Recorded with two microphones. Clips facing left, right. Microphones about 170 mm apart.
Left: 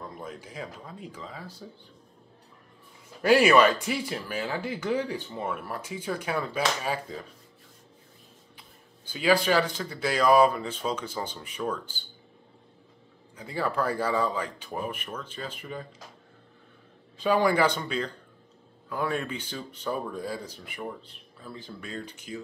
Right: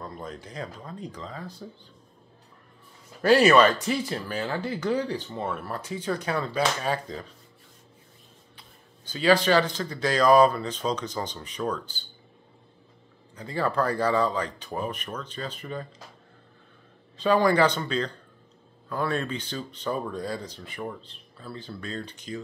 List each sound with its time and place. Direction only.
0.0 s speech: 10° left (ahead or behind)
3.2 s speech: 15° left (ahead or behind)
9.1 s speech: 10° left (ahead or behind)
13.4 s speech: 10° left (ahead or behind)
17.2 s speech: 10° left (ahead or behind)